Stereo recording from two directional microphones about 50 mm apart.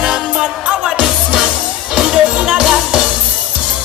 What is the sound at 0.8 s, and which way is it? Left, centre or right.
Music, centre.